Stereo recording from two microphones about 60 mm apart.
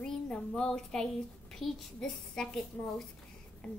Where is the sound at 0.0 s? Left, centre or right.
Centre.